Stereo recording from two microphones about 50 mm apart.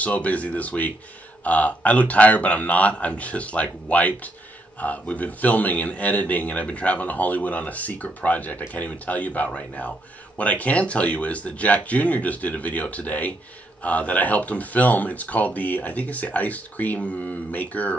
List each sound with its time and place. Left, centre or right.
0.0 s a man's voice: left